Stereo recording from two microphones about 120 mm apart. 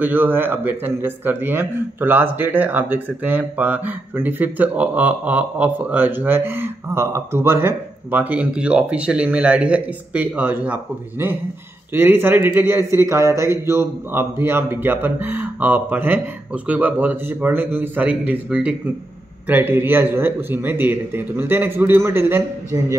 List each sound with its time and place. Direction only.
0.0 s speech: 15° right (ahead or behind)